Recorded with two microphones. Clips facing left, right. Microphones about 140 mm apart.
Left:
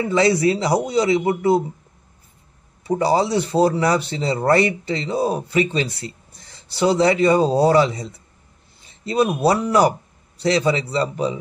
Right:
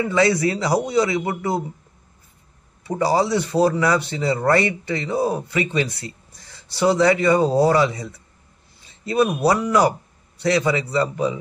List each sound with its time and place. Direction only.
0.0 s speech: 25° left (ahead or behind)
2.9 s speech: 25° left (ahead or behind)